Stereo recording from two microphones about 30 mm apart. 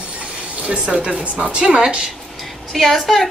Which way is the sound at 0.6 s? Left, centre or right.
Right.